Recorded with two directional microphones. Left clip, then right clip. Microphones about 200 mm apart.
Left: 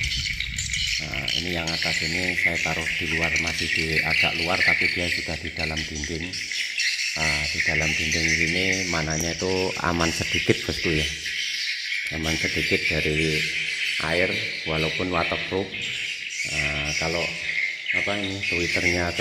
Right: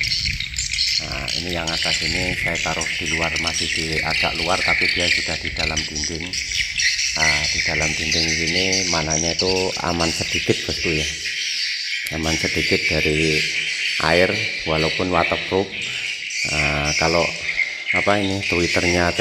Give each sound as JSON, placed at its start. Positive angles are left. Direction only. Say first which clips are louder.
{"t": 3.9, "sound": "speech", "louder": "even", "side_deg": 0}
{"t": 7.2, "sound": "speech", "louder": "right 5 dB", "side_deg": 0}
{"t": 12.3, "sound": "speech", "louder": "right 4 dB", "side_deg": -10}
{"t": 14.0, "sound": "speech", "louder": "right 9 dB", "side_deg": -15}
{"t": 14.8, "sound": "speech", "louder": "right 5 dB", "side_deg": -5}
{"t": 16.5, "sound": "speech", "louder": "right 5 dB", "side_deg": -30}